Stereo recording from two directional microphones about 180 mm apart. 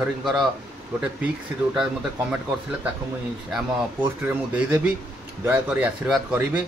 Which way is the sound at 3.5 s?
10° right (ahead or behind).